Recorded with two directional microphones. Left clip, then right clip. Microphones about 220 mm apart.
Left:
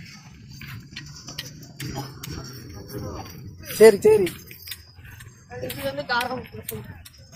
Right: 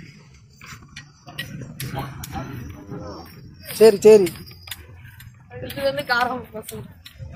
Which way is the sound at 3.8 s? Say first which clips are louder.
Right 2 dB; 5° left (ahead or behind).